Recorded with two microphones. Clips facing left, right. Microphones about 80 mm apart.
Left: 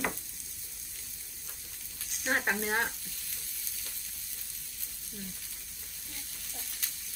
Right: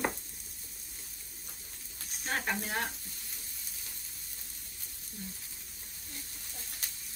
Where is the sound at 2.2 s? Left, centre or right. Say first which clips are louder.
Left 4 dB; left.